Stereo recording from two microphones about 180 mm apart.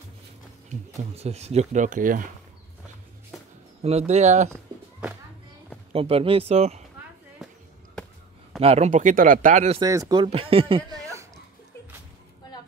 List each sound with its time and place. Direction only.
0.7 s speech: 35° right (ahead or behind)
4.1 s speech: 40° right (ahead or behind)
5.9 s speech: 30° right (ahead or behind)
8.5 s speech: 35° right (ahead or behind)
9.8 s speech: 20° right (ahead or behind)